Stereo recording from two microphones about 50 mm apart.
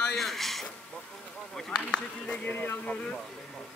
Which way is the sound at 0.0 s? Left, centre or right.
Centre.